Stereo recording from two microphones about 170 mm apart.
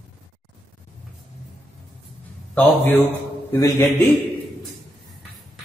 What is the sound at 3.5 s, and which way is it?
Speech, 15° left (ahead or behind).